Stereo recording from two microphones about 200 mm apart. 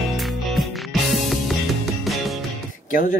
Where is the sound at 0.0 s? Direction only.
Centre (ahead or behind).